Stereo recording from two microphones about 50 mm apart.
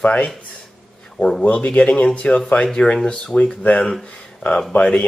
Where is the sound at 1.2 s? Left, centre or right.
Centre.